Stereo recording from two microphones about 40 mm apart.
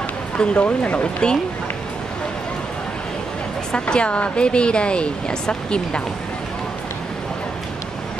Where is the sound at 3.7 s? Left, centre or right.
Left.